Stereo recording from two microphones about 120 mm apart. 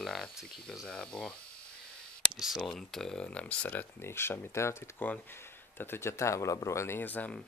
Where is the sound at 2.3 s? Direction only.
Centre (ahead or behind).